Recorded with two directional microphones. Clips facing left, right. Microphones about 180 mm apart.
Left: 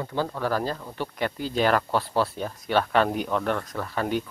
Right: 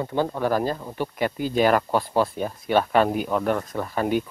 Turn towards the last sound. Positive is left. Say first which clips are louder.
# right 3 dB
turn(degrees=-10)  # may be behind; listen again after turning